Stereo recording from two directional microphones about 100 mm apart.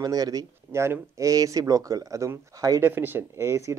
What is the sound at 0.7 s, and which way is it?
Speech, 25° right (ahead or behind).